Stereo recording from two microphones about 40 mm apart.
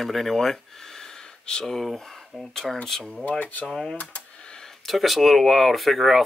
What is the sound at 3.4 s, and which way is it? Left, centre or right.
Speech, left.